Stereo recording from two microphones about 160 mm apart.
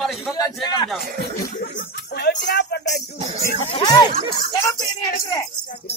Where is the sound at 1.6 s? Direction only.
85° left.